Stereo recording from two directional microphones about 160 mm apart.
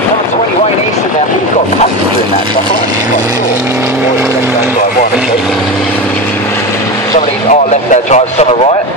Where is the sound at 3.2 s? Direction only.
20° right (ahead or behind).